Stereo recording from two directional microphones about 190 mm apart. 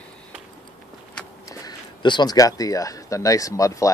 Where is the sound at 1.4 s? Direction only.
20° left (ahead or behind).